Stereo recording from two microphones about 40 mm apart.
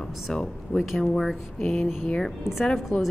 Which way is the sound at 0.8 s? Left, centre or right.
Centre.